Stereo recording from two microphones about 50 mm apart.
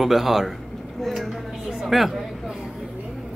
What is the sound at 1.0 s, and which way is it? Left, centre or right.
Vehicle, centre.